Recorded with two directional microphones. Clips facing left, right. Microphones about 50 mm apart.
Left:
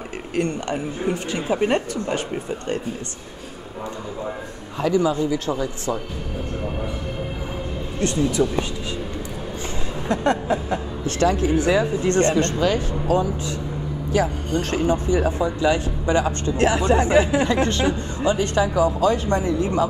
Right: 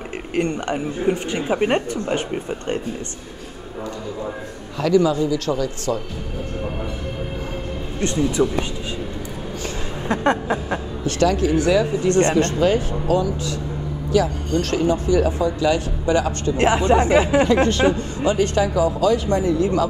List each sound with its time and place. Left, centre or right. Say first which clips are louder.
0.3 s speech: right 2 dB; right
4.7 s speech: right 3 dB; left
8.0 s speech: right 1 dB; right
10.0 s speech: right 1 dB; right
11.1 s speech: right 1 dB; left
12.2 s speech: right 2 dB; right
14.1 s speech: right 2 dB; left
16.5 s speech: right 2 dB; right
18.4 s speech: right 2 dB; left